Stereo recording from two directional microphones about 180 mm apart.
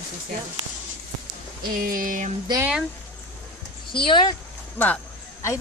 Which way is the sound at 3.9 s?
30° left (ahead or behind).